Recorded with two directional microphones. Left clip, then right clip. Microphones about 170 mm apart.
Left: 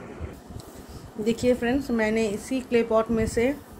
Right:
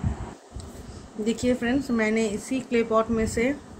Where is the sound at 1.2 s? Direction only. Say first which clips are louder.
Left 2 dB; 25° left (ahead or behind).